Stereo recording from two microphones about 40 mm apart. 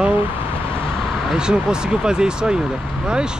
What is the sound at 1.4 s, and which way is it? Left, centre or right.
Speech, centre.